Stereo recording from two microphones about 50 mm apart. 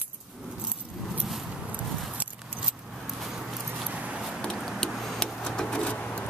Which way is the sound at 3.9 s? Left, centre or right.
Right.